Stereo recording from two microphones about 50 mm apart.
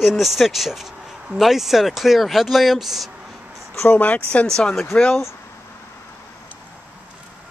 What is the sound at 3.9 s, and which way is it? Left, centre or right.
Speech, left.